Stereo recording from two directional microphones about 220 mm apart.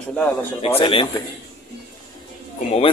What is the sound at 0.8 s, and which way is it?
Speech, 25° left (ahead or behind).